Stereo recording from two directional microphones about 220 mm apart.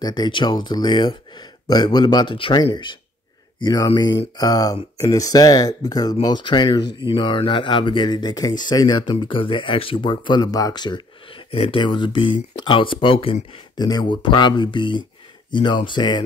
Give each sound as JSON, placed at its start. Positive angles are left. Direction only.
{"t": 0.0, "sound": "speech", "side_deg": 20}